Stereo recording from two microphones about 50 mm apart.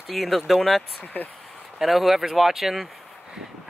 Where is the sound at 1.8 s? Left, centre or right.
Centre.